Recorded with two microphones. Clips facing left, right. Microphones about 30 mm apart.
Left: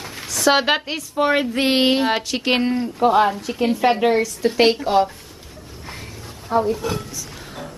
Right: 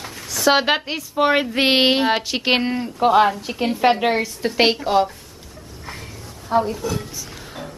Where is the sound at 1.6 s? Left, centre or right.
Right.